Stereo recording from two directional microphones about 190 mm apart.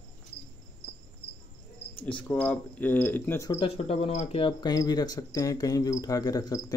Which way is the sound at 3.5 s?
30° left (ahead or behind).